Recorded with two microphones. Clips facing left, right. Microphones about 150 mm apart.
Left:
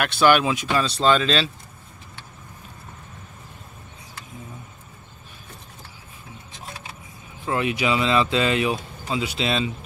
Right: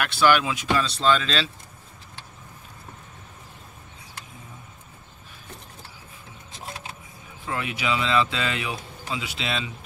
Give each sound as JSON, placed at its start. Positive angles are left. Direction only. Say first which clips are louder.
{"t": 0.0, "sound": "speech", "louder": "left 3 dB", "side_deg": 20}
{"t": 0.7, "sound": "speech", "louder": "left 3 dB", "side_deg": 45}
{"t": 1.1, "sound": "speech", "louder": "left 4 dB", "side_deg": 25}
{"t": 7.4, "sound": "speech", "louder": "left 5 dB", "side_deg": 25}